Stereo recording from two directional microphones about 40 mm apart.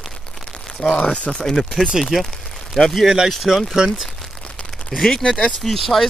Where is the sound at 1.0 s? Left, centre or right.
Left.